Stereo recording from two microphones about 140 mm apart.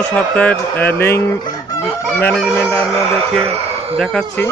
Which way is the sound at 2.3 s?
5° left (ahead or behind).